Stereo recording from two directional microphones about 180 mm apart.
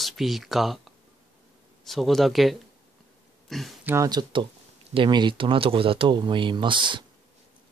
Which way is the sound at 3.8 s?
15° right (ahead or behind).